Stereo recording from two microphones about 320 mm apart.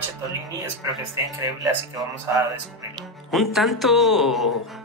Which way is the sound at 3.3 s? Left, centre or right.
Centre.